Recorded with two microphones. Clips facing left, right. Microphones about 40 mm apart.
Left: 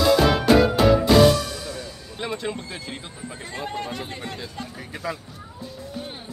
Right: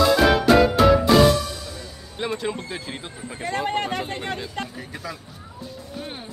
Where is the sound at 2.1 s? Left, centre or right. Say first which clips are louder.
Right 2 dB; centre.